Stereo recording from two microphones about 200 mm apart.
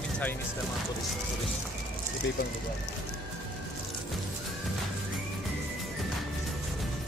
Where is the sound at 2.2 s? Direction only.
60° left (ahead or behind).